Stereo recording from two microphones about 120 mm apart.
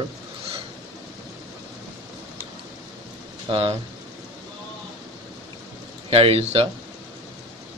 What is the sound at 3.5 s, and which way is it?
Speech, 55° right (ahead or behind).